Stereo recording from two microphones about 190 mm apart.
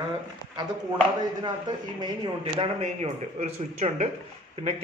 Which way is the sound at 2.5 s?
30° right (ahead or behind).